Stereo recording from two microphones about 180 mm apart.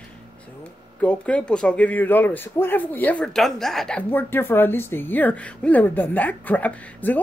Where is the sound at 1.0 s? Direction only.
5° left (ahead or behind).